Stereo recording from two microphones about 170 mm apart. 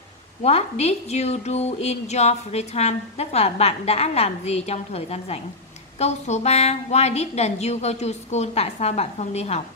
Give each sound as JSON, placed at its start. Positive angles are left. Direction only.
{"t": 0.4, "sound": "a woman's voice", "side_deg": 35}